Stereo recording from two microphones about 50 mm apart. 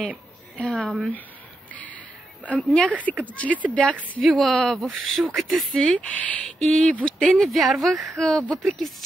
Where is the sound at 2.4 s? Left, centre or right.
Left.